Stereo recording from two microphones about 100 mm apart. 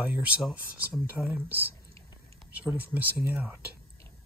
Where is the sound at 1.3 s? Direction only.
20° right (ahead or behind).